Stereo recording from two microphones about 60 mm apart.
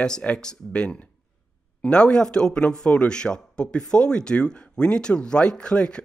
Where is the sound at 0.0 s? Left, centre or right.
Centre.